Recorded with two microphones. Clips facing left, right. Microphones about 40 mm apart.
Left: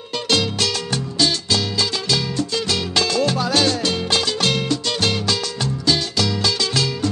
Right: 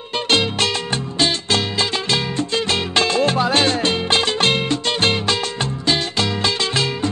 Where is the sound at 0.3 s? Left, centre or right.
Right.